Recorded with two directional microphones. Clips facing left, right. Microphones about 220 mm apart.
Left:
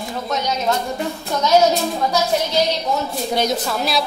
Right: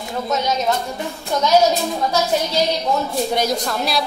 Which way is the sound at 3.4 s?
5° left (ahead or behind).